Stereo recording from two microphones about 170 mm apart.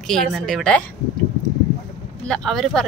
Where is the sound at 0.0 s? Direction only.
Centre (ahead or behind).